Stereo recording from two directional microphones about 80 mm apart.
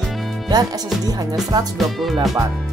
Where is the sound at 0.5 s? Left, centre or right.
Right.